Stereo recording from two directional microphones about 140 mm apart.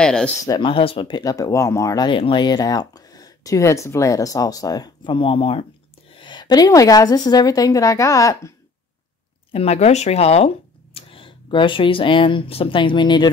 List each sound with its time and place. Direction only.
0.0 s speech: 5° left (ahead or behind)
0.4 s speech: 25° left (ahead or behind)
0.7 s speech: 40° left (ahead or behind); by 8.5 s 20° left (ahead or behind)
9.5 s speech: 45° left (ahead or behind)